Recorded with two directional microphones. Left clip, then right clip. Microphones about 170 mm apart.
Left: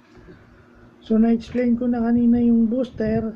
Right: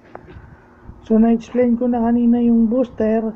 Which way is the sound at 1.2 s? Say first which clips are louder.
Right 5 dB; centre (ahead or behind).